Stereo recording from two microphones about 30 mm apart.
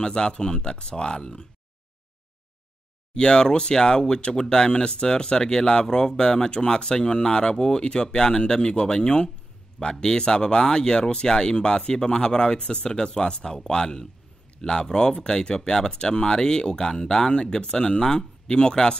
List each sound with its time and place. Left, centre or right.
0.0 s speech: left
3.2 s speech: left